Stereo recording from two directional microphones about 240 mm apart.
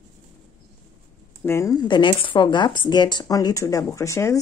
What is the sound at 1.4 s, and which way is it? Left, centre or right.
Speech, centre.